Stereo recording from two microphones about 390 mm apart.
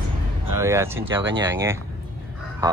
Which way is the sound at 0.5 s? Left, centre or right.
Centre.